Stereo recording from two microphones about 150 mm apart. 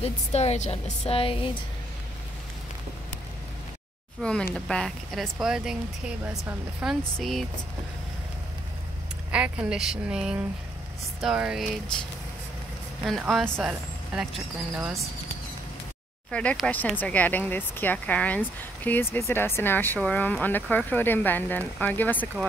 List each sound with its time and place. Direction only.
0.0 s speech: 45° left (ahead or behind)
4.2 s speech: 5° left (ahead or behind)
9.3 s a woman's voice: 5° right (ahead or behind)
13.0 s speech: centre (ahead or behind)
16.3 s speech: 5° left (ahead or behind)